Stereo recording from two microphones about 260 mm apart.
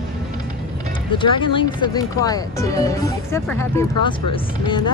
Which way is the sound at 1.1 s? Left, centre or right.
Centre.